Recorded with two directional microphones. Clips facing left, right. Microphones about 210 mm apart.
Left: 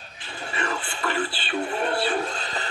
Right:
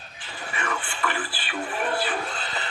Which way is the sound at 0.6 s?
25° left (ahead or behind).